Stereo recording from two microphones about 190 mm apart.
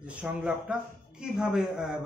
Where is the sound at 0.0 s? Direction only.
5° right (ahead or behind).